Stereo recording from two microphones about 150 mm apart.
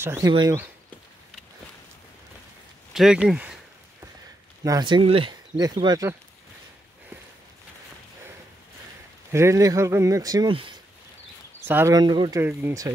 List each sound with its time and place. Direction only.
0.0 s speech: 15° right (ahead or behind)
2.9 s speech: 5° right (ahead or behind)
4.6 s speech: 30° right (ahead or behind)
9.3 s speech: 20° right (ahead or behind)
11.6 s speech: 15° right (ahead or behind)
12.4 s speech: 15° right (ahead or behind)